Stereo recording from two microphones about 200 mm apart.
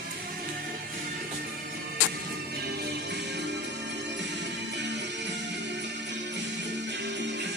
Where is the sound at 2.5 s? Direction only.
55° right (ahead or behind).